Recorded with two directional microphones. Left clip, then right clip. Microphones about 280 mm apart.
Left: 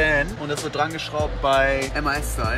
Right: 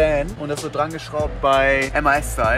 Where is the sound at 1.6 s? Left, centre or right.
Centre.